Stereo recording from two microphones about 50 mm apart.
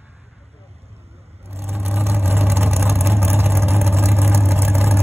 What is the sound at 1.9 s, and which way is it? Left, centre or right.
Vehicle, right.